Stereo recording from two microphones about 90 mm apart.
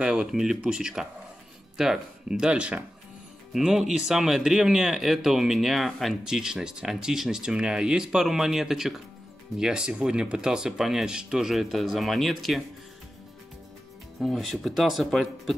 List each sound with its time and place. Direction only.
0.0 s speech: 10° right (ahead or behind)
14.2 s speech: centre (ahead or behind)